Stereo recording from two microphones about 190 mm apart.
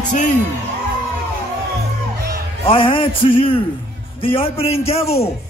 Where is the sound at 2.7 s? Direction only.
30° left (ahead or behind).